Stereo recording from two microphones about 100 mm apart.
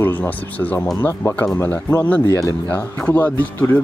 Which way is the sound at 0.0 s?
20° left (ahead or behind).